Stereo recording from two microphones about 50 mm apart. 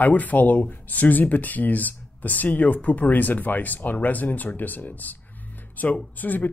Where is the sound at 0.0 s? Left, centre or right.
Left.